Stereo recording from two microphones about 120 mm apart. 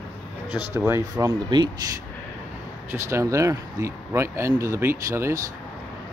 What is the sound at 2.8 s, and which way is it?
Speech, 20° right (ahead or behind).